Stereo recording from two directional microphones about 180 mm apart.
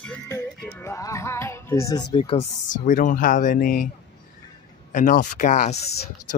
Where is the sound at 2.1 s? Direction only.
35° left (ahead or behind).